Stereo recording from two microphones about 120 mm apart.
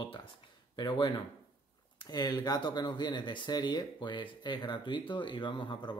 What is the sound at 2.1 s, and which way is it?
Speech, 35° left (ahead or behind).